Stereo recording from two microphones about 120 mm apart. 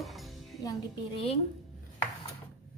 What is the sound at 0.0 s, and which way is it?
Music, centre (ahead or behind).